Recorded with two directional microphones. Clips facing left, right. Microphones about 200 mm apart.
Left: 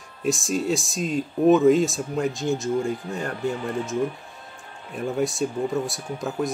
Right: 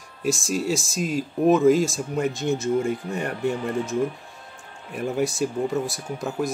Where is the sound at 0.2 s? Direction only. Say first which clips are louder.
Even; centre (ahead or behind).